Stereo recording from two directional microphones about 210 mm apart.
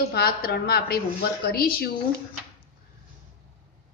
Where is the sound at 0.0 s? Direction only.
50° left (ahead or behind).